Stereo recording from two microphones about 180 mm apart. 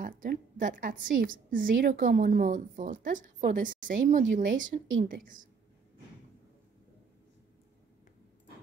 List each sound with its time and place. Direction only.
0.0 s a woman's voice: 50° right (ahead or behind)